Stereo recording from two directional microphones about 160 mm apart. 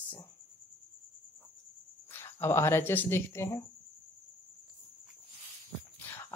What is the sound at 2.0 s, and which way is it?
Speech, 15° left (ahead or behind).